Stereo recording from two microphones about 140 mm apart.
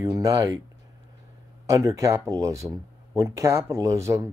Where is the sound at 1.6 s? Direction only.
25° right (ahead or behind).